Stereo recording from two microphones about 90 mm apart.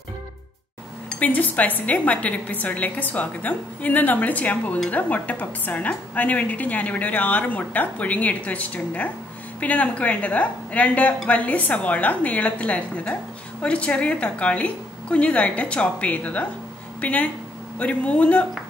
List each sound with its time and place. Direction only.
1.2 s a woman's voice: 20° left (ahead or behind)